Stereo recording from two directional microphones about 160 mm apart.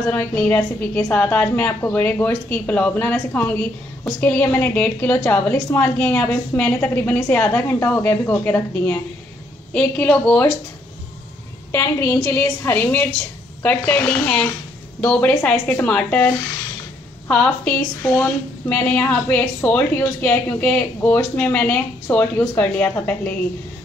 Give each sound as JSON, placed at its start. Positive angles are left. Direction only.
{"t": 0.1, "sound": "a woman's voice", "side_deg": 10}
{"t": 11.7, "sound": "a woman's voice", "side_deg": 15}
{"t": 17.3, "sound": "a woman's voice", "side_deg": 10}